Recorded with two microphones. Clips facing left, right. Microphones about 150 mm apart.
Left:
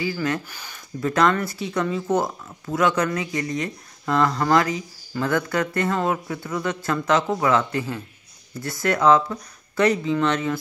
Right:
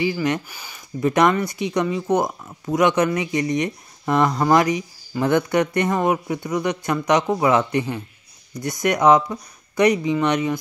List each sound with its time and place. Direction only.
0.0 s speech: 20° right (ahead or behind)